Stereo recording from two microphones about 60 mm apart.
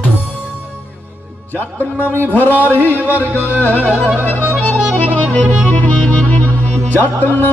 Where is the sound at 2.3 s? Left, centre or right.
Left.